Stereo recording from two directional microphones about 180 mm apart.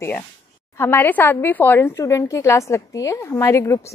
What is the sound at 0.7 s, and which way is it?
A woman's voice, 10° left (ahead or behind).